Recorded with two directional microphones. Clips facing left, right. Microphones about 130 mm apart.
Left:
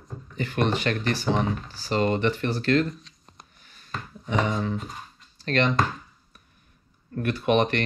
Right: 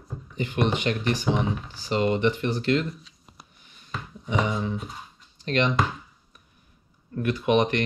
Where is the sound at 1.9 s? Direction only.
45° left (ahead or behind).